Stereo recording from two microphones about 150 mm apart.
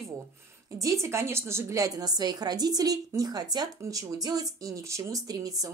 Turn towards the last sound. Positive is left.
turn(degrees=-25)  # may be behind; listen again after turning